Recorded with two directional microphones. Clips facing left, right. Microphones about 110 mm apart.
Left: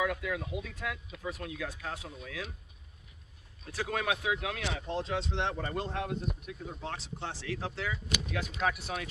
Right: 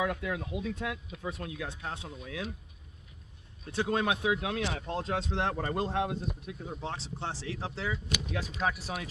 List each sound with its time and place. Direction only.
0.0 s speech: 30° right (ahead or behind)
3.7 s speech: 25° right (ahead or behind)
4.7 s speech: 45° right (ahead or behind)